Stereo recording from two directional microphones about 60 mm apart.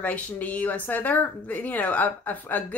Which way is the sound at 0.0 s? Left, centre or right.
Left.